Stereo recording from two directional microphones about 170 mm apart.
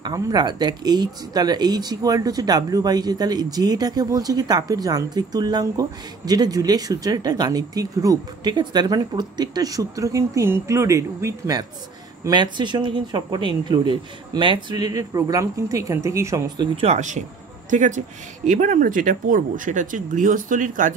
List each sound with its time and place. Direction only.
0.0 s speech: 25° right (ahead or behind)
16.7 s speech: 40° right (ahead or behind)